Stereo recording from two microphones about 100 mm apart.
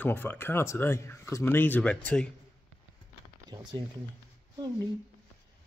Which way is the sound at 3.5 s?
50° right (ahead or behind).